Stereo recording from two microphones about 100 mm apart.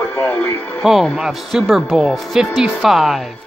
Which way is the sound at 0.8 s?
Centre (ahead or behind).